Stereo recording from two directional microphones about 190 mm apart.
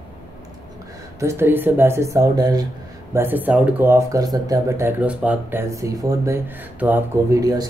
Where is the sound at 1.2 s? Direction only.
15° right (ahead or behind).